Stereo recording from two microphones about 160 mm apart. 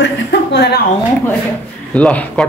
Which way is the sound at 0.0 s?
90° left.